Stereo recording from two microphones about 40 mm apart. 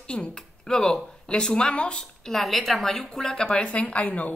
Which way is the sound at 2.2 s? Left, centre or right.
Centre.